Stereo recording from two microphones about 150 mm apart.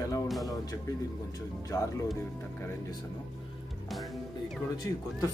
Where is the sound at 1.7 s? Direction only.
20° left (ahead or behind).